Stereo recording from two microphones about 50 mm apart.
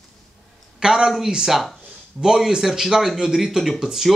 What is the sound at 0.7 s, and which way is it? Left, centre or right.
A woman's voice, centre.